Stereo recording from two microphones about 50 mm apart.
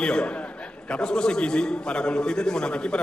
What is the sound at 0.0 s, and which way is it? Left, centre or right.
A man's voice, centre.